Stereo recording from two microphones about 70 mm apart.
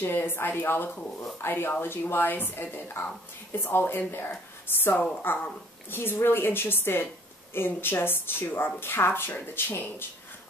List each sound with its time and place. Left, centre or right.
0.0 s speech: left